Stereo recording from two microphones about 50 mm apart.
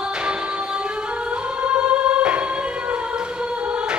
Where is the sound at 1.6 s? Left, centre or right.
Right.